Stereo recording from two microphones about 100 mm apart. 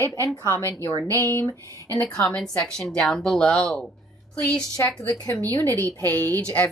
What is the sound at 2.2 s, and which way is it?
A woman's voice, 5° left (ahead or behind).